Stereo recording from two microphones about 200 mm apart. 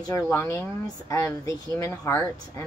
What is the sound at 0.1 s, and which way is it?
Speech, 15° left (ahead or behind).